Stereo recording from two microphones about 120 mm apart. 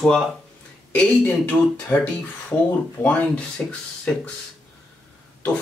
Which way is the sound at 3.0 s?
10° left (ahead or behind).